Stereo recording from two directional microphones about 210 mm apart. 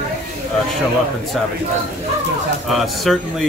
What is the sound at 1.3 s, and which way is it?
Speech, centre (ahead or behind).